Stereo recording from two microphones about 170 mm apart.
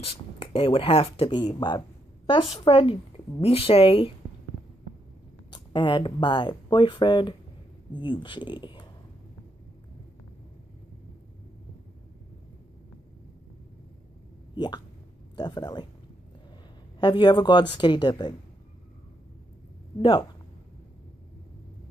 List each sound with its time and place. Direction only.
0.0 s a woman's voice: 30° left (ahead or behind)
5.5 s speech: 25° left (ahead or behind)
14.5 s hiccup: 25° left (ahead or behind)
15.3 s speech: 25° left (ahead or behind)
17.0 s speech: 25° left (ahead or behind)
20.0 s a woman's voice: 30° left (ahead or behind)